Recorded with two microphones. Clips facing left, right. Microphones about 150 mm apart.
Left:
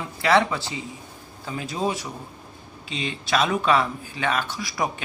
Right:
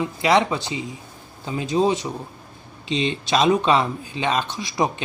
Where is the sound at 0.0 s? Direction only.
20° right (ahead or behind).